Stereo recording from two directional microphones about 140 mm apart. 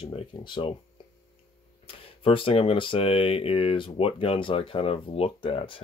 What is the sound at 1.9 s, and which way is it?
Speech, 40° left (ahead or behind).